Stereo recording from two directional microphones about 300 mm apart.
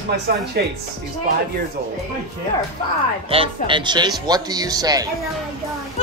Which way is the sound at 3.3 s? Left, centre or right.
Centre.